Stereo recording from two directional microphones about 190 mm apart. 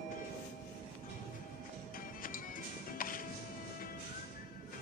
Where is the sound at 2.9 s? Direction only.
45° left (ahead or behind).